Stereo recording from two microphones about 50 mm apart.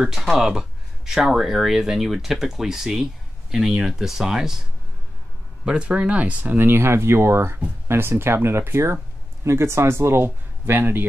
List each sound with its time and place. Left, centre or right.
0.2 s speech: centre
5.7 s speech: right
6.6 s speech: right